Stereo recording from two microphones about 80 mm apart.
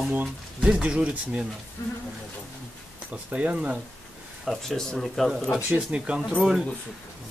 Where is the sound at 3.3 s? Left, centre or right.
Centre.